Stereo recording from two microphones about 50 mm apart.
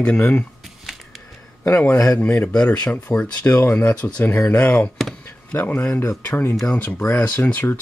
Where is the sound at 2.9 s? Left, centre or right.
Left.